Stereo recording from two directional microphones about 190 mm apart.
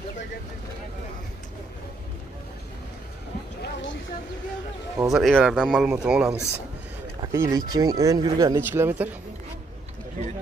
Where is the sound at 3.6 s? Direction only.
70° left (ahead or behind).